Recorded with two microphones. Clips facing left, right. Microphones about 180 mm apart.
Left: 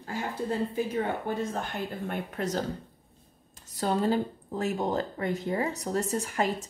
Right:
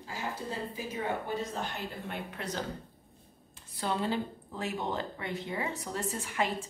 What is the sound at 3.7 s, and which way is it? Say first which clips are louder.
Speech: left 6 dB; 40° left (ahead or behind).